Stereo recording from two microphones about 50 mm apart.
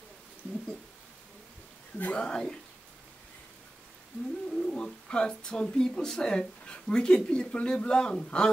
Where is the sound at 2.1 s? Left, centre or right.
Centre.